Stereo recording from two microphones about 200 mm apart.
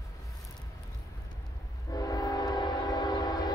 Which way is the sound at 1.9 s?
20° left (ahead or behind).